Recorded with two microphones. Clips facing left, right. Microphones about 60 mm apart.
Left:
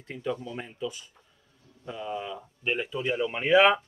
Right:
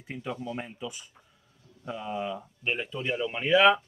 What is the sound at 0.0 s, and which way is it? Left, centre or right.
Speech, centre.